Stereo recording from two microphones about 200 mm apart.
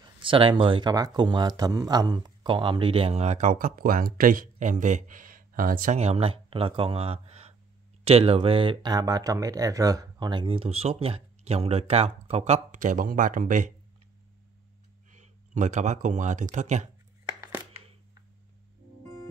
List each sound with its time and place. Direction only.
0.2 s speech: 25° right (ahead or behind)
15.0 s speech: 35° right (ahead or behind)
17.3 s a sound: 20° right (ahead or behind)